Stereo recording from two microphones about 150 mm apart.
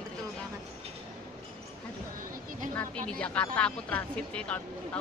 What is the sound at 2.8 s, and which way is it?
Speech, 10° left (ahead or behind).